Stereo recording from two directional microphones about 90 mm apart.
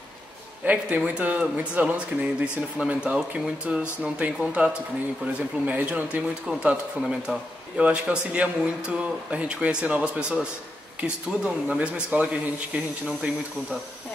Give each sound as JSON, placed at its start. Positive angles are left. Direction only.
{"t": 0.7, "sound": "speech", "side_deg": -15}
{"t": 5.7, "sound": "speech", "side_deg": -15}